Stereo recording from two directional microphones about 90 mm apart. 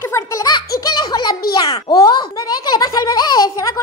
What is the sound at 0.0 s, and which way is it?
Baby laughter, 35° left (ahead or behind).